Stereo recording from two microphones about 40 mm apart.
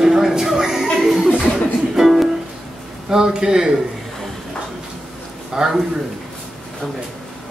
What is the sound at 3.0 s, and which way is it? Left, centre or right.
Speech, centre.